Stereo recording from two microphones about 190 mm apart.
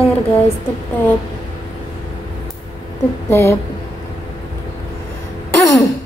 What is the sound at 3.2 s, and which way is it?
Speech, 15° left (ahead or behind).